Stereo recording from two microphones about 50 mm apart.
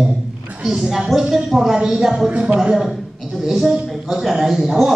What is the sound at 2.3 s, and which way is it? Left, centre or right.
Speech, centre.